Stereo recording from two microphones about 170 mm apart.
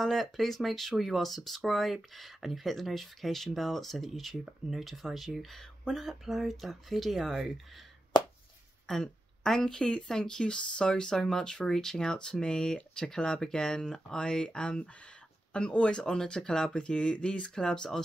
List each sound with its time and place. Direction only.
0.0 s speech: centre (ahead or behind)
8.8 s speech: 5° left (ahead or behind)